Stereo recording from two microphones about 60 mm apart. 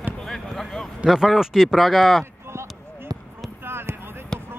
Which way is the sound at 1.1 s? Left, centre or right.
Centre.